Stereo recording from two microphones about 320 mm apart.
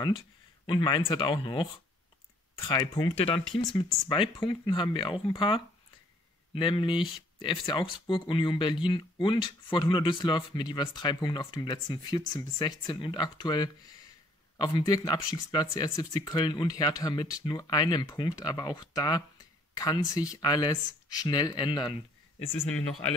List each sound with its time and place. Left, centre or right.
0.7 s speech: centre